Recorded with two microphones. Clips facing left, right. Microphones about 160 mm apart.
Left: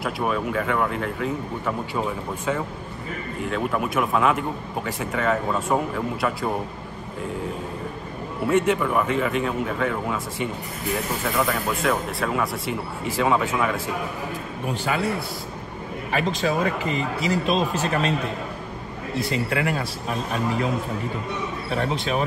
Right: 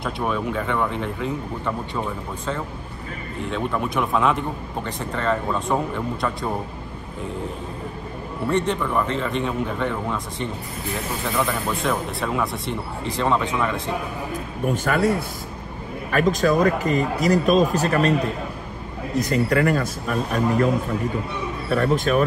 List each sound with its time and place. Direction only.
0.0 s a man's voice: 5° left (ahead or behind)
8.5 s a man's voice: 5° left (ahead or behind)
14.7 s speech: 45° right (ahead or behind)
16.1 s speech: 45° right (ahead or behind)
19.1 s speech: 40° right (ahead or behind)
21.6 s speech: 50° right (ahead or behind)